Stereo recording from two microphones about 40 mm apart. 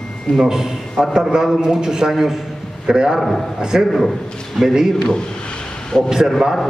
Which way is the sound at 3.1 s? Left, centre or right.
Centre.